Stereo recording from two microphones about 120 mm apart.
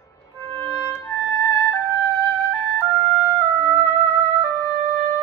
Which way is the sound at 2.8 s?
20° left (ahead or behind).